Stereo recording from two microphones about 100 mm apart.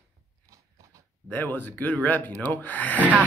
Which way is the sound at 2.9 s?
15° right (ahead or behind).